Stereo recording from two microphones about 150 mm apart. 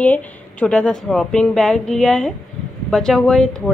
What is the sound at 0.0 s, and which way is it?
A woman's voice, 10° left (ahead or behind).